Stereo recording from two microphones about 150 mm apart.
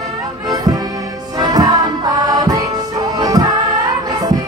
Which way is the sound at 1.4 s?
25° right (ahead or behind).